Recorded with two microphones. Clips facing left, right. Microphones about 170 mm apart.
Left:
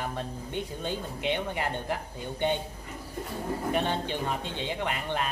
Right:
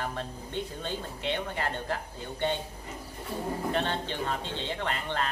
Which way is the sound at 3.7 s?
15° left (ahead or behind).